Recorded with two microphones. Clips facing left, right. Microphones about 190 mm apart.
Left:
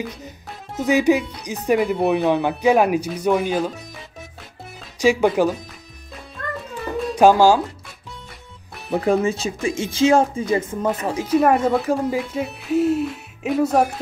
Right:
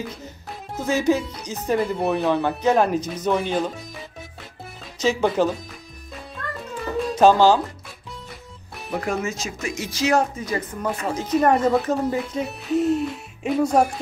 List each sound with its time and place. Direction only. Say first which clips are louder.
0.7 s speech: left 4 dB; 15° left (ahead or behind)
4.9 s speech: left 4 dB; 15° left (ahead or behind)
7.2 s speech: left 2 dB; 10° left (ahead or behind)
8.9 s speech: left 7 dB; 30° left (ahead or behind); by 13.9 s 5° left (ahead or behind)